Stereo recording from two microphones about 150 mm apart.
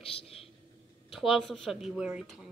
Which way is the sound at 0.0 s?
40° left (ahead or behind).